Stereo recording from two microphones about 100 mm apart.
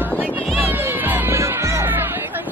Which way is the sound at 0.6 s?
20° right (ahead or behind).